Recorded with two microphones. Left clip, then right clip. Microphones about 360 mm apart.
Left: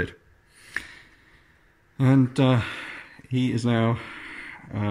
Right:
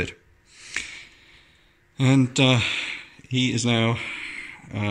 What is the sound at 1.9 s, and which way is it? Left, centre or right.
Speech, centre.